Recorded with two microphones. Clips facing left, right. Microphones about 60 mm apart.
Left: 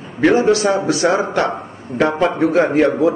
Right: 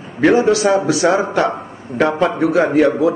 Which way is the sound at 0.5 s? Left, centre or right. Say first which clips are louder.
Right 1 dB; centre.